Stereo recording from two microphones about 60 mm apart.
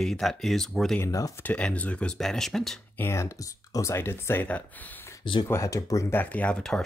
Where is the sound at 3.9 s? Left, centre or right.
Left.